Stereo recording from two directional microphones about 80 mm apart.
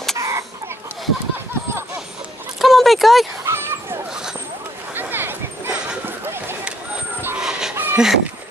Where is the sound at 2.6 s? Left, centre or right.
Centre.